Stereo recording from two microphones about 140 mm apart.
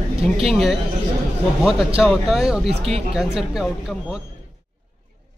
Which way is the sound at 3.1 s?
5° right (ahead or behind).